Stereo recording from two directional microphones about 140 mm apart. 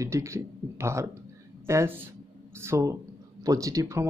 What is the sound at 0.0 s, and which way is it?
Speech, 20° right (ahead or behind).